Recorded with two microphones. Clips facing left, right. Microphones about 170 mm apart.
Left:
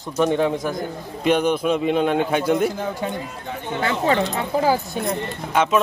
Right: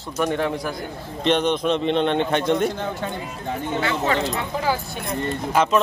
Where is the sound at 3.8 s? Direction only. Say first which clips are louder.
Left 3 dB; 35° left (ahead or behind).